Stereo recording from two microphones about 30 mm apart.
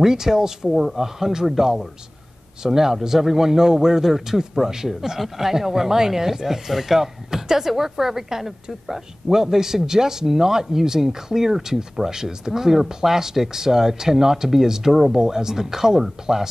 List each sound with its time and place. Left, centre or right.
0.0 s a man's voice: centre
2.6 s a man's voice: centre